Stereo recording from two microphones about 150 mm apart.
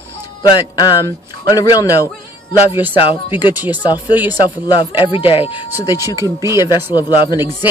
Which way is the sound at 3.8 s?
25° left (ahead or behind).